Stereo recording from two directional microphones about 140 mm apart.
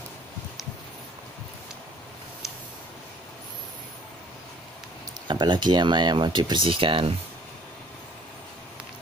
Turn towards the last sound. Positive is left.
turn(degrees=-40)  # may be behind; listen again after turning